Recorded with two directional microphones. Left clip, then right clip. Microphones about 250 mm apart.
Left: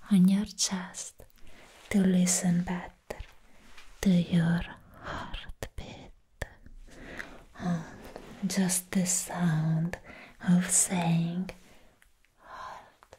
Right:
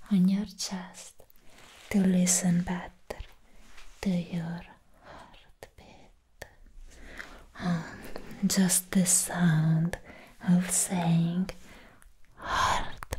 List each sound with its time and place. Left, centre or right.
0.0 s speech: centre
1.9 s speech: centre
4.0 s whispering: left
7.0 s dog: left
7.5 s a sound: centre
8.1 s speech: centre
12.4 s gasp: right